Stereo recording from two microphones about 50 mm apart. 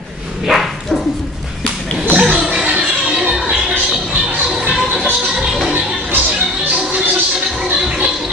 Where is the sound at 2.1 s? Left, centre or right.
Right.